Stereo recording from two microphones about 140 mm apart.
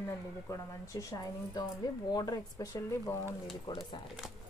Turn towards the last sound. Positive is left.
turn(degrees=35)  # may be behind; listen again after turning